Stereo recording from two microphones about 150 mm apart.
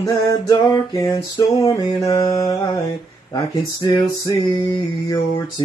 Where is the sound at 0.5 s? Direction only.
25° left (ahead or behind).